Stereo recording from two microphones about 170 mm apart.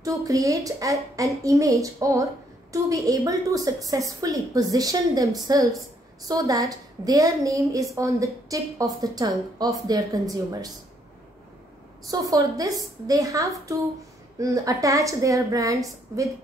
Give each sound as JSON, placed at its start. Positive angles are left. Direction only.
{"t": 0.0, "sound": "a woman's voice", "side_deg": -20}
{"t": 12.1, "sound": "a woman's voice", "side_deg": -20}